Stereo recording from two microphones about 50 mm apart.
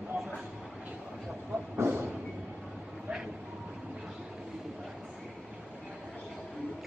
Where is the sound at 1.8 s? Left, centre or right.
Right.